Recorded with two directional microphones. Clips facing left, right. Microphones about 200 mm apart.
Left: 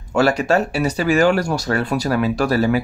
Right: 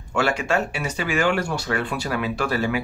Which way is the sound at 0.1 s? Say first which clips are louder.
Left 6 dB; 40° left (ahead or behind).